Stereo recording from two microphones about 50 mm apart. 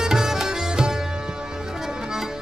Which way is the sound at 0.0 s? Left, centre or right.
Centre.